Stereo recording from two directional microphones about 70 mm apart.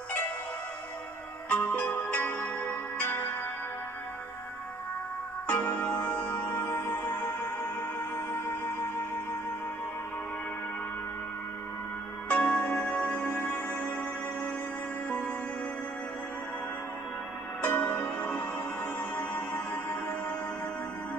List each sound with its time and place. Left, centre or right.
1.5 s music: centre
5.5 s music: centre
12.3 s music: centre
15.0 s music: centre
17.6 s music: centre